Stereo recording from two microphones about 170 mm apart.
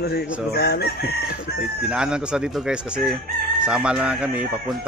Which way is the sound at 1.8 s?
5° right (ahead or behind).